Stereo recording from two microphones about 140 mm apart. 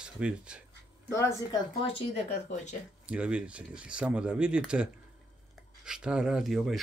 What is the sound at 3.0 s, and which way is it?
Speech, 10° right (ahead or behind).